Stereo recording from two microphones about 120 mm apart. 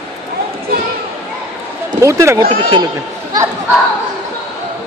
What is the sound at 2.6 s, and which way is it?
Speech, 40° right (ahead or behind).